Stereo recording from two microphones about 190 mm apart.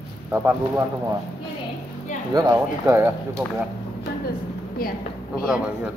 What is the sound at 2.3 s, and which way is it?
A man's voice, 15° right (ahead or behind).